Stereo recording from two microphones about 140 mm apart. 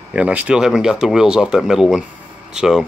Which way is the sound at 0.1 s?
10° right (ahead or behind).